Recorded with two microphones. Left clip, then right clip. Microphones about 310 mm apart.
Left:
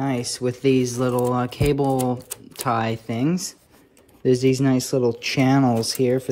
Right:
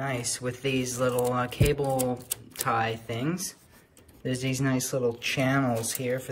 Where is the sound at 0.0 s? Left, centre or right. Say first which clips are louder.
Left 6 dB; centre.